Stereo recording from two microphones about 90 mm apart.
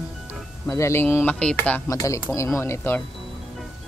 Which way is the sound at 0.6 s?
30° left (ahead or behind).